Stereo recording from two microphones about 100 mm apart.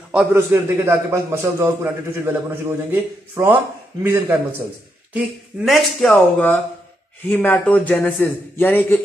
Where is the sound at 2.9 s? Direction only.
20° right (ahead or behind).